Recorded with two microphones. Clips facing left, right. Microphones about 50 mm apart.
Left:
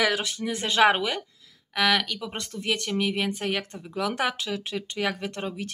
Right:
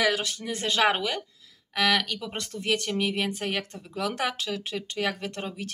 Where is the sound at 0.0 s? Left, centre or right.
Centre.